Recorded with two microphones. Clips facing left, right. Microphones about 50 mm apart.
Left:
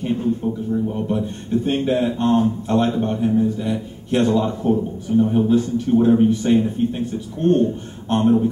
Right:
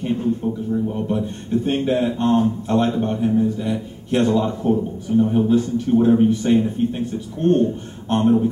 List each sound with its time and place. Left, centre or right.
0.0 s speech: centre
8.1 s speech: centre